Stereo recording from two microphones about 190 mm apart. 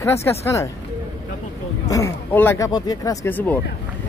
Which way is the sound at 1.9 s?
15° left (ahead or behind).